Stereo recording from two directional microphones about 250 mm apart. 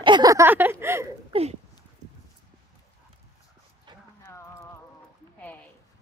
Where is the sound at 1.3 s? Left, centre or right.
Right.